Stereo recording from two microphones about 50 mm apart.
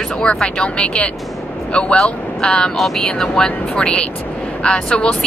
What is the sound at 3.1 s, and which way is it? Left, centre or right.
Speech, centre.